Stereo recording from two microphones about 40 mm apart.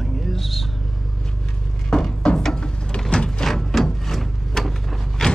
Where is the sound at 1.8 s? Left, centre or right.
Centre.